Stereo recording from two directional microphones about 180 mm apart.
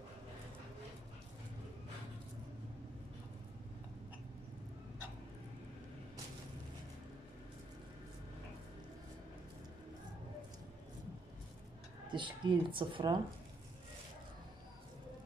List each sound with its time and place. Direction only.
12.1 s speech: 25° right (ahead or behind)